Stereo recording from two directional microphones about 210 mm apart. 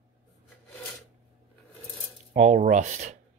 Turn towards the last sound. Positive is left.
turn(degrees=-35)  # may be behind; listen again after turning